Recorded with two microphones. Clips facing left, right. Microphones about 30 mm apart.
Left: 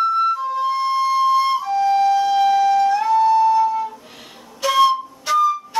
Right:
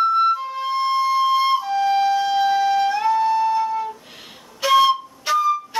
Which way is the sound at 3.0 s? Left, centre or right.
Centre.